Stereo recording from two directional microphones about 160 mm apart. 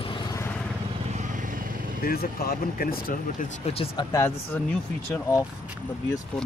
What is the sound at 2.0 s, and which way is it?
Speech, 70° left (ahead or behind).